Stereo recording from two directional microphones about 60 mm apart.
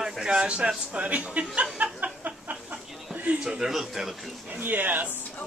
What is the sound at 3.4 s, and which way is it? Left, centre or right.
Speech, centre.